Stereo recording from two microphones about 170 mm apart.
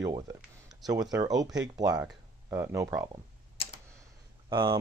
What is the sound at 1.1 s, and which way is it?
Speech, 20° right (ahead or behind).